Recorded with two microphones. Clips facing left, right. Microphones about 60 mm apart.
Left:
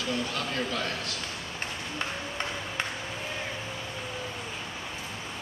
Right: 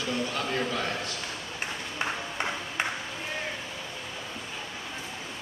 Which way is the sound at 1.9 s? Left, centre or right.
Centre.